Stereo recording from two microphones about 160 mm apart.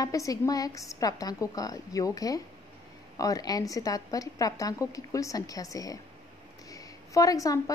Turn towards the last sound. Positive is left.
turn(degrees=20)  # may be behind; listen again after turning